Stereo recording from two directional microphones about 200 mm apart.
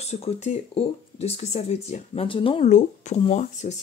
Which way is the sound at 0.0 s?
30° left (ahead or behind).